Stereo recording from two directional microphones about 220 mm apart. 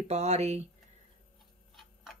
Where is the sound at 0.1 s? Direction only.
30° right (ahead or behind).